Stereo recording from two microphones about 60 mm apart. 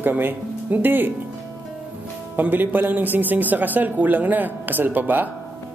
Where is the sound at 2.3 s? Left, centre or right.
Right.